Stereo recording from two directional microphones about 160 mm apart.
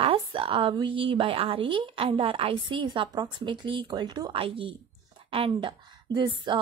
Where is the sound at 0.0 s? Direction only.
35° right (ahead or behind).